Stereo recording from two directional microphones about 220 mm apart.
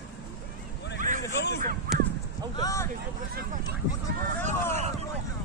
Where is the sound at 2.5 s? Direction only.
15° left (ahead or behind).